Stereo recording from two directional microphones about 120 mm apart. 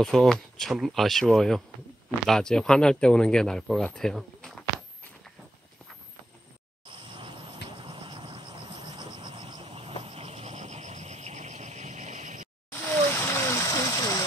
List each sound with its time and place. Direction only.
0.0 s speech: 5° left (ahead or behind)
6.9 s a sound: 45° right (ahead or behind)
9.7 s vehicle: 55° right (ahead or behind); by 12.4 s 90° right
12.8 s water: 20° left (ahead or behind)